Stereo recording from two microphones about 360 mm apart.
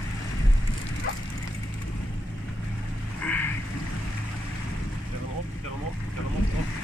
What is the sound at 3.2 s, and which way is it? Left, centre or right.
Vehicle, centre.